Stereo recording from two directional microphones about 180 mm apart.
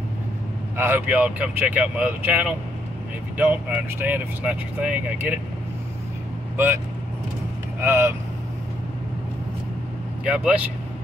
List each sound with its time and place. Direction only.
0.7 s speech: 10° right (ahead or behind)
6.5 s speech: 10° right (ahead or behind)
7.8 s speech: 15° right (ahead or behind)
10.2 s speech: 5° right (ahead or behind)